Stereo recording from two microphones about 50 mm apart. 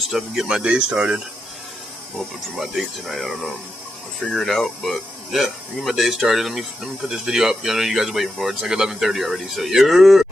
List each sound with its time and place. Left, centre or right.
0.1 s speech: centre
2.5 s speech: centre
5.3 s speech: centre